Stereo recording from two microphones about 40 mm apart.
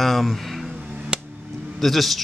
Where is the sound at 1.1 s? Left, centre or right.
Right.